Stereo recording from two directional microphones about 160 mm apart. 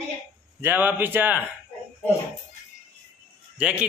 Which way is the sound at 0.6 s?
10° right (ahead or behind).